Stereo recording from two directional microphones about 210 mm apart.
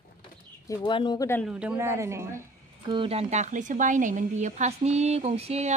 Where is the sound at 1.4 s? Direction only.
5° right (ahead or behind).